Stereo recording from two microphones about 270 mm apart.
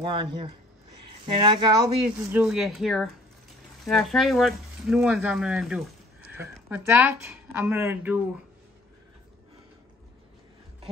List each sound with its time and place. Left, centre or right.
0.0 s speech: centre